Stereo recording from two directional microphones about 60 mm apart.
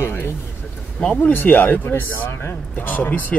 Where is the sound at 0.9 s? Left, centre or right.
Left.